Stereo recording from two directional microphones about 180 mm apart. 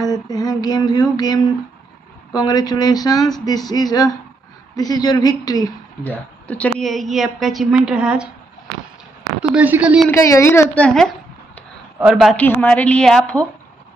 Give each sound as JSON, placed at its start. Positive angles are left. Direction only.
{"t": 0.0, "sound": "speech", "side_deg": 20}
{"t": 6.4, "sound": "a woman's voice", "side_deg": 5}
{"t": 9.4, "sound": "a woman's voice", "side_deg": -5}
{"t": 10.0, "sound": "a woman's voice", "side_deg": 15}
{"t": 12.4, "sound": "a woman's voice", "side_deg": 10}